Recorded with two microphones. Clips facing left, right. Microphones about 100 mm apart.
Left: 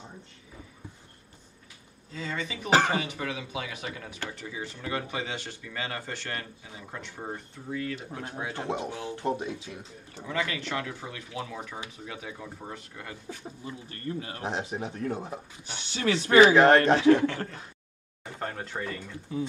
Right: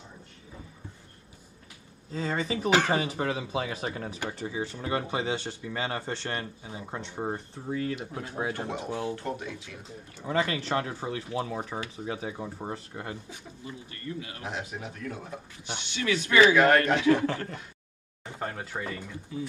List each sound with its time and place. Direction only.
2.1 s speech: 35° right (ahead or behind)
8.5 s speech: 25° left (ahead or behind)
10.2 s speech: 35° right (ahead or behind)
13.4 s speech: 35° left (ahead or behind)
18.4 s speech: 5° right (ahead or behind)